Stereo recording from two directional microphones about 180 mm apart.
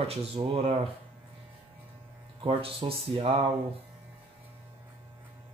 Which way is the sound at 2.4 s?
30° right (ahead or behind).